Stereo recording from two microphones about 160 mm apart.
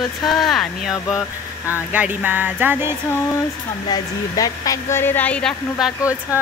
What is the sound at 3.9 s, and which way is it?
A woman's voice, 20° left (ahead or behind).